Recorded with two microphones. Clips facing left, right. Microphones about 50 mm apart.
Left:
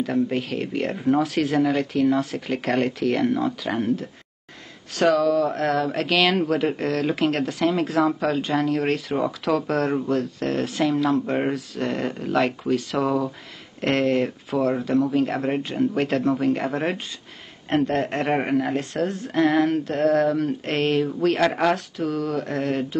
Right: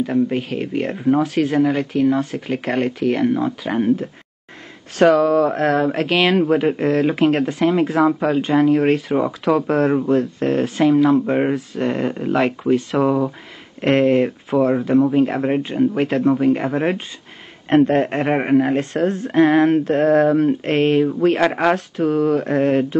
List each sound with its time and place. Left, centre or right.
0.0 s speech: centre
3.8 s speech: right
5.9 s speech: right
11.5 s speech: right
12.0 s speech: centre
17.6 s speech: right
18.1 s speech: centre
18.6 s speech: right